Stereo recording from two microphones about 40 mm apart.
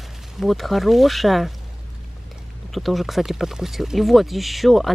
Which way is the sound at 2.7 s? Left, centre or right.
Centre.